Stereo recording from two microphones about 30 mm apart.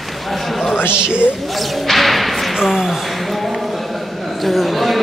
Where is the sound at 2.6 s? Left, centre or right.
Centre.